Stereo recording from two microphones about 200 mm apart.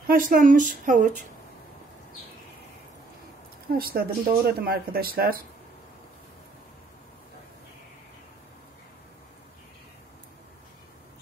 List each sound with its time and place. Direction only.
0.0 s speech: 45° right (ahead or behind)
3.6 s speech: 50° right (ahead or behind)